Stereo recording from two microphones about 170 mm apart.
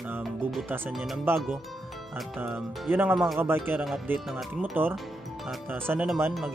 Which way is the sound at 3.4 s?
15° right (ahead or behind).